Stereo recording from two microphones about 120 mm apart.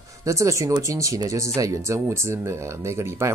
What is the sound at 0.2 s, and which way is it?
Speech, 25° right (ahead or behind).